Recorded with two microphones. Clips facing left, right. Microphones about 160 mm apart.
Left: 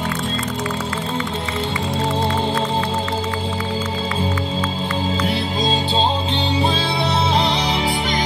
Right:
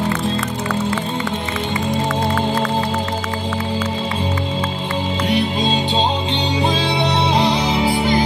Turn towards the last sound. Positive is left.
turn(degrees=0)  # may be behind; listen again after turning